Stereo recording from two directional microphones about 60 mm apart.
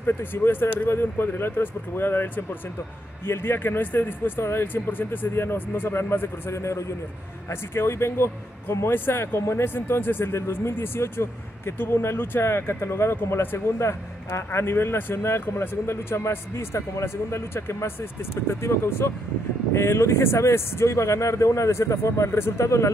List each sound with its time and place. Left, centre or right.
0.0 s speech: left
7.7 s speech: left